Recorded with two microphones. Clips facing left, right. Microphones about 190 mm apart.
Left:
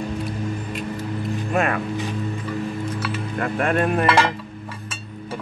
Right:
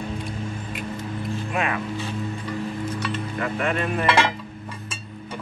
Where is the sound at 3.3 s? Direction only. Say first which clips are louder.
Left 5 dB; 50° left (ahead or behind).